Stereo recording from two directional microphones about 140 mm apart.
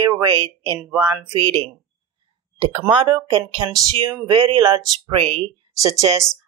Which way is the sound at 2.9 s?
35° right (ahead or behind).